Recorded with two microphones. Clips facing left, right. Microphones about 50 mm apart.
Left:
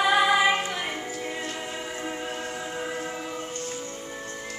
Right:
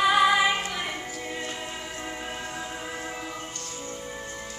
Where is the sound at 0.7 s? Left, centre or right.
Centre.